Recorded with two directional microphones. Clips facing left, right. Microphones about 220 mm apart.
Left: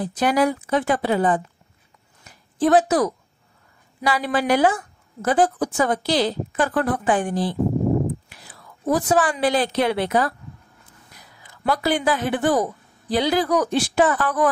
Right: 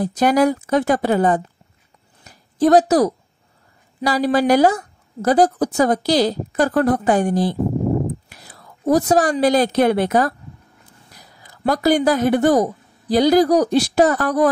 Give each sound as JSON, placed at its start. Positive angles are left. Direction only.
{"t": 0.0, "sound": "a woman's voice", "side_deg": -40}
{"t": 2.2, "sound": "a sound", "side_deg": -35}
{"t": 4.0, "sound": "a woman's voice", "side_deg": -40}